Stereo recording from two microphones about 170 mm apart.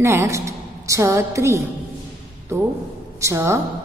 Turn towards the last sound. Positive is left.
turn(degrees=-15)  # may be behind; listen again after turning